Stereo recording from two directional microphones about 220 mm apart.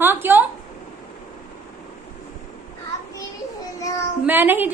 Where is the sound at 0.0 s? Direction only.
10° right (ahead or behind).